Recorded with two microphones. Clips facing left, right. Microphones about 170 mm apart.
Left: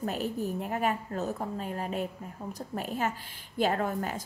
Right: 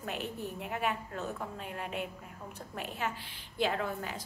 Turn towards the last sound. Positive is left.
turn(degrees=45)  # may be behind; listen again after turning